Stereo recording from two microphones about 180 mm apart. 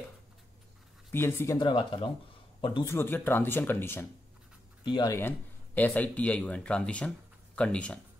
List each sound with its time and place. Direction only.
1.1 s speech: 15° left (ahead or behind)
1.6 s speech: 25° left (ahead or behind)
2.8 s speech: 15° left (ahead or behind)
4.8 s speech: 25° left (ahead or behind); by 8.0 s 5° left (ahead or behind)